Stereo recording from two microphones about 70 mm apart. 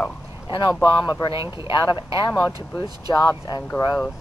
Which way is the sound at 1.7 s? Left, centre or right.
Left.